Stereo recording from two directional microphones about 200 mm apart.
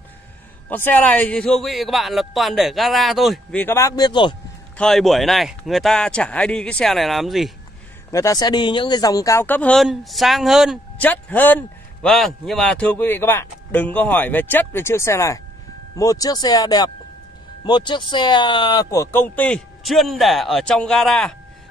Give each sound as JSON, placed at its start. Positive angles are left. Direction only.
{"t": 0.7, "sound": "a man's voice", "side_deg": 10}
{"t": 3.6, "sound": "speech", "side_deg": 15}
{"t": 4.7, "sound": "a man's voice", "side_deg": 0}
{"t": 8.1, "sound": "a man's voice", "side_deg": 15}
{"t": 11.0, "sound": "a man's voice", "side_deg": 10}